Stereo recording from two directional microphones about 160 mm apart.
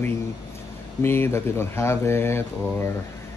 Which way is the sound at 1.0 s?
15° left (ahead or behind).